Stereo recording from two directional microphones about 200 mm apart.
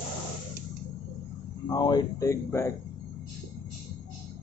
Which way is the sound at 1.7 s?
20° left (ahead or behind).